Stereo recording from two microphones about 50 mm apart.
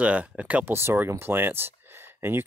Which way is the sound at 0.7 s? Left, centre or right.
Right.